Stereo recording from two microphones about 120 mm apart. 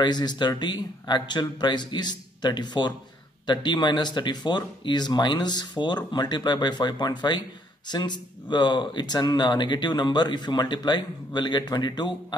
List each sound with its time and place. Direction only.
0.0 s speech: 35° left (ahead or behind)